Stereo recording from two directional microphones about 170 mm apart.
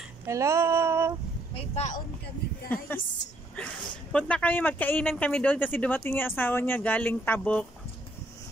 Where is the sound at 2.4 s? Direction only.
70° left (ahead or behind).